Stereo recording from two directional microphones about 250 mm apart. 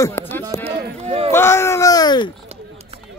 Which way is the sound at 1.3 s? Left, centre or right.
Centre.